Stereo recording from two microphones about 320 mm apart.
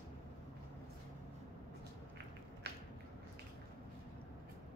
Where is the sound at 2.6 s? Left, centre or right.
Right.